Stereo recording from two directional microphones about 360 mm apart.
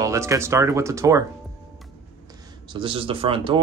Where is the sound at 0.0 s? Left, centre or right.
Centre.